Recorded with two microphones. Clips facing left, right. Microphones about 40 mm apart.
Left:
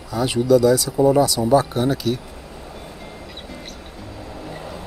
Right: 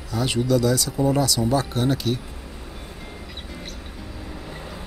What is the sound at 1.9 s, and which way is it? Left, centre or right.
Speech, centre.